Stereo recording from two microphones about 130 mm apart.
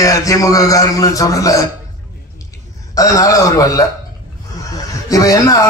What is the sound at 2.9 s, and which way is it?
Speech, 25° left (ahead or behind).